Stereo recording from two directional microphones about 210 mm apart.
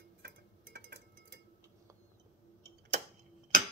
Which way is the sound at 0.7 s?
50° right (ahead or behind).